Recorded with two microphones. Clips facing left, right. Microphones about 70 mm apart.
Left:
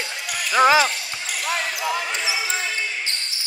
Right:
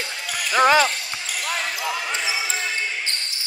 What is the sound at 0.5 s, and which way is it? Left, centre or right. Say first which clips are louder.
Speech: left 1 dB; centre.